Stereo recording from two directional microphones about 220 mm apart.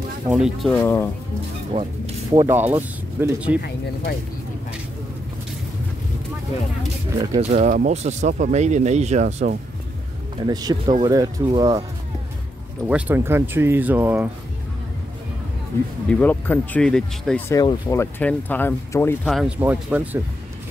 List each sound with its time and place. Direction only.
0.3 s speech: centre (ahead or behind)
1.7 s speech: 20° right (ahead or behind)
3.6 s speech: 45° left (ahead or behind)
7.3 s speech: 35° right (ahead or behind)
10.4 s speech: 20° right (ahead or behind)
12.8 s speech: 5° right (ahead or behind)
16.1 s speech: 5° left (ahead or behind)
17.6 s speech: 15° left (ahead or behind)
19.2 s speech: 5° right (ahead or behind)